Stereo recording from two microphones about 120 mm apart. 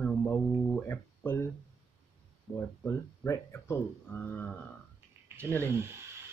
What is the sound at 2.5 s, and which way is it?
Speech, 25° left (ahead or behind).